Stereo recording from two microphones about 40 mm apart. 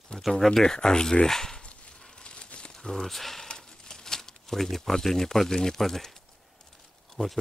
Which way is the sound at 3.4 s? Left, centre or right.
Centre.